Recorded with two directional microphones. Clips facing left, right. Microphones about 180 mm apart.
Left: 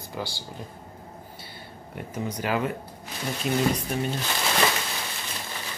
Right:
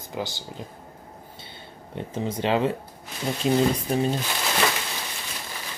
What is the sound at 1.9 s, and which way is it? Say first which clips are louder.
Speech: right 3 dB; 25° right (ahead or behind).